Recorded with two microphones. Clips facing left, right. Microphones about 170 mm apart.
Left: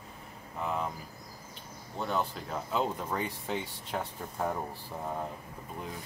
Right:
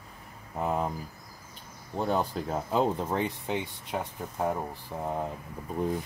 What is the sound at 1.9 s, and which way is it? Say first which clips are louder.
Speech: right 5 dB; 40° right (ahead or behind).